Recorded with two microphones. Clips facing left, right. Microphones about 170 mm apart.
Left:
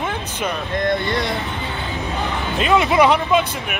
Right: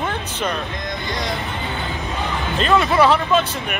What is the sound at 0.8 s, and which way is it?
Speech, 60° left (ahead or behind).